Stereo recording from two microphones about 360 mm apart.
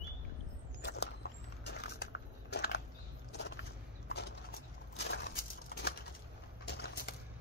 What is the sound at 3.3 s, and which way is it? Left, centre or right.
Vehicle, left.